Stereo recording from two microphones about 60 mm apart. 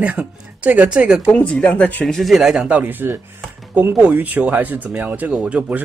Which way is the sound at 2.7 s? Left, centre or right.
Right.